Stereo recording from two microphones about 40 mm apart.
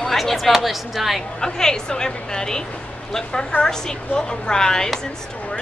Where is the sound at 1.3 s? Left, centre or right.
Centre.